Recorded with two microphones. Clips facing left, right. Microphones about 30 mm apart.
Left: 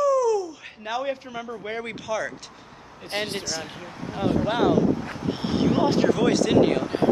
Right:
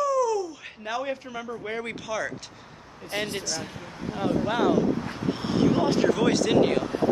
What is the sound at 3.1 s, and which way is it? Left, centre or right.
Speech, left.